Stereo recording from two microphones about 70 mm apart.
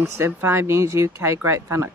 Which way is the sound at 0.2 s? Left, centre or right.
Right.